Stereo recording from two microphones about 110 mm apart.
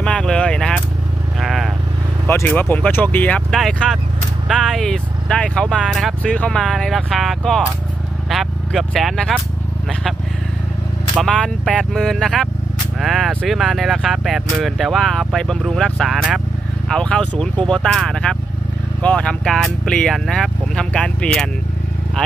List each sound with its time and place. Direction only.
0.0 s vehicle: 5° left (ahead or behind)
2.2 s speech: 20° left (ahead or behind)
3.5 s speech: centre (ahead or behind)
6.2 s speech: 10° left (ahead or behind)
11.1 s speech: 5° left (ahead or behind)